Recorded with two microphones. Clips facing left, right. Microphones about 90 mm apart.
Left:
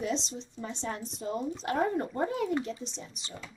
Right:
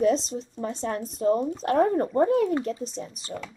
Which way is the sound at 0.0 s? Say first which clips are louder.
Right 10 dB; 45° right (ahead or behind).